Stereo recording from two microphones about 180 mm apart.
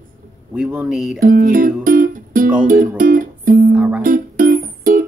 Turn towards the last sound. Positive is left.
turn(degrees=-50)  # may be behind; listen again after turning